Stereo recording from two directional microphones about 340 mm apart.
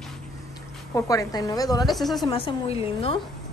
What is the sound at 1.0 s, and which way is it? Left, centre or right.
Speech, centre.